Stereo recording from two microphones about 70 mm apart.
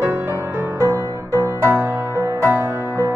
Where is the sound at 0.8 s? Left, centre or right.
Right.